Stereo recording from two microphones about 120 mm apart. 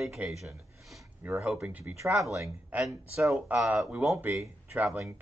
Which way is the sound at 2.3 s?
25° right (ahead or behind).